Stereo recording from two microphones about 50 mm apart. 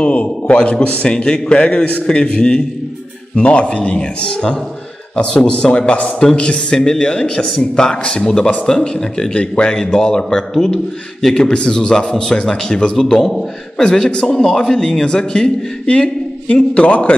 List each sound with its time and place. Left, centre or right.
0.0 s a man's voice: left